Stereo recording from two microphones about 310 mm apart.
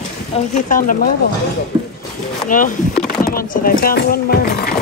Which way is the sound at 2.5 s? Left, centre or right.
Left.